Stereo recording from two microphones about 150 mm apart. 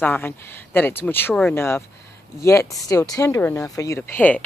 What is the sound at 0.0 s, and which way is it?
Speech, 15° left (ahead or behind).